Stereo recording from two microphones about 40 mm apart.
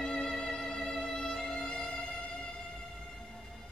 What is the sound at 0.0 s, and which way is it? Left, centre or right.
Music, centre.